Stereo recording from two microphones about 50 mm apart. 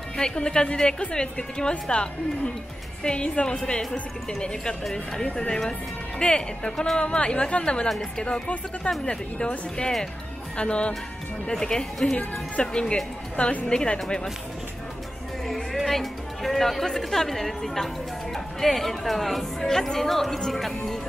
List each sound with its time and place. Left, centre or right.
0.2 s a woman's voice: centre
12.2 s a woman's voice: left
15.4 s a woman's voice: centre